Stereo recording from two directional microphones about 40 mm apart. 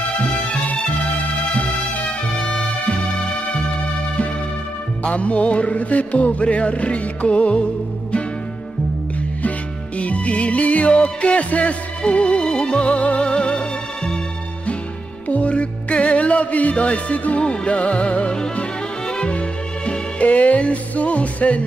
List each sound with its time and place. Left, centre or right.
2.3 s music: centre
5.0 s music: left
9.9 s music: left
15.2 s music: left